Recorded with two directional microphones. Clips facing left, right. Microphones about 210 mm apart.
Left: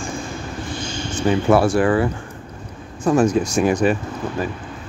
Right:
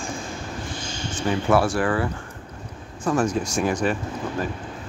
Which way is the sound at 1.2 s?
25° left (ahead or behind).